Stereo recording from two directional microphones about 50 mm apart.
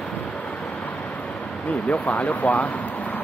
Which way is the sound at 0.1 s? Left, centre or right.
Left.